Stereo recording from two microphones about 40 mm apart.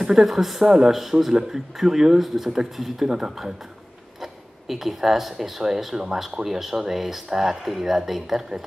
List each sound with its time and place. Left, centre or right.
0.0 s speech: centre
0.7 s speech: centre
4.2 s a sound: centre
5.7 s speech: centre